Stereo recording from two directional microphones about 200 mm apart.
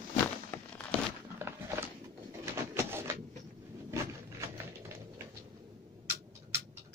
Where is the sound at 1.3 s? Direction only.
10° right (ahead or behind).